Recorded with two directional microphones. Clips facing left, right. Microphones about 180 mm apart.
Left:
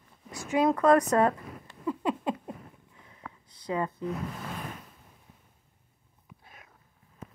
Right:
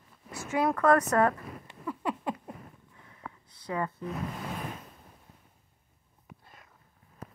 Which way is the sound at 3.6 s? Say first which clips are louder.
Left 2 dB; 20° left (ahead or behind).